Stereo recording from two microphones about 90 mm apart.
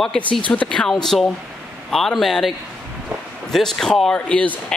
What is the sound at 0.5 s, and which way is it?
Speech, 10° left (ahead or behind).